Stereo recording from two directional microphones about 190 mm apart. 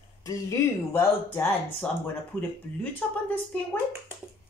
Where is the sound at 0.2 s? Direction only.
15° left (ahead or behind).